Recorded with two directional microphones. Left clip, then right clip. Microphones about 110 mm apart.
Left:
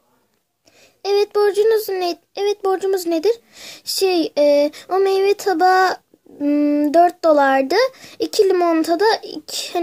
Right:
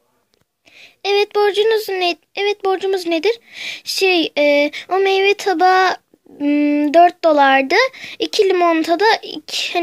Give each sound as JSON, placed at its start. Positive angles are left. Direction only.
{"t": 0.7, "sound": "a child's voice", "side_deg": -25}